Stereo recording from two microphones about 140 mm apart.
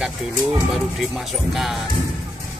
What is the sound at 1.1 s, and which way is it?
Speech, centre (ahead or behind).